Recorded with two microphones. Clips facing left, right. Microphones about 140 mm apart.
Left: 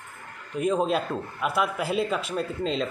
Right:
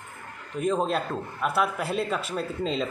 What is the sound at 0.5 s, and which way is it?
A man's voice, centre (ahead or behind).